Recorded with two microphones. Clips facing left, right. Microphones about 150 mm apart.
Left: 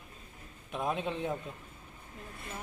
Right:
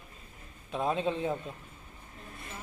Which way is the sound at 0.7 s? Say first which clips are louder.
Right 3 dB; 5° left (ahead or behind).